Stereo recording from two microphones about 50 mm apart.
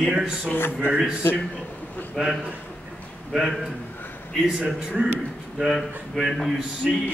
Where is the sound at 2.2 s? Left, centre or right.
Centre.